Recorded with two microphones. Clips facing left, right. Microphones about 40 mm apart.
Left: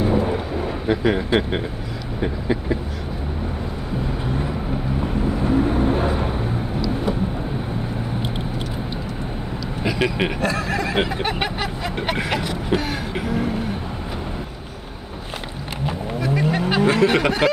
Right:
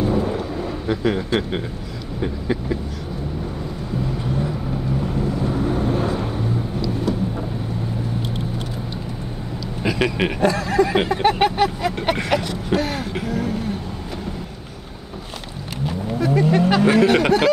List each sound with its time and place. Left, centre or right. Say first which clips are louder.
0.0 s vehicle: left 1 dB; left
2.2 s a sound: left 1 dB; centre
5.0 s vehicle: left 3 dB; left
9.8 s speech: right 1 dB; centre
15.8 s a sound: right 2 dB; left
16.3 s speech: right 3 dB; centre